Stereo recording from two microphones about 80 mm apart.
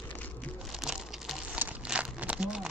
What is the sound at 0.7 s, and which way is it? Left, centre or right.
Crumpling, centre.